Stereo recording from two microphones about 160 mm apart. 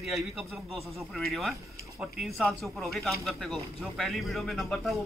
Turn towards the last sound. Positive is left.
turn(degrees=0)  # may be behind; listen again after turning